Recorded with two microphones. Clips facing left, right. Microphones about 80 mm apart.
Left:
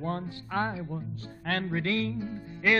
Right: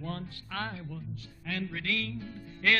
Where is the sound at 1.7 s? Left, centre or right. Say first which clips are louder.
Left 6 dB; left.